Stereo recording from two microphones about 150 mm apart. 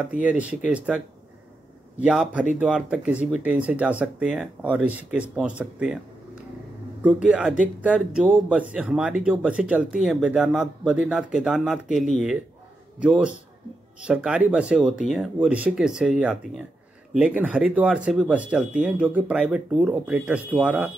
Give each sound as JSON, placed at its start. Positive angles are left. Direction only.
{"t": 0.1, "sound": "speech", "side_deg": -10}
{"t": 7.0, "sound": "speech", "side_deg": -10}
{"t": 13.0, "sound": "speech", "side_deg": -5}